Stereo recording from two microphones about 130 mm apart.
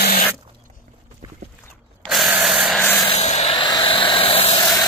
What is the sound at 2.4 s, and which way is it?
Rub, 5° right (ahead or behind).